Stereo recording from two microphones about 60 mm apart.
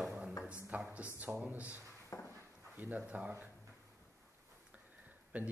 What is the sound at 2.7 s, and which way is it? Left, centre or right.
Speech, right.